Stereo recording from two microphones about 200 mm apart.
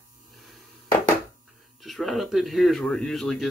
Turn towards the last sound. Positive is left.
turn(degrees=0)  # may be behind; listen again after turning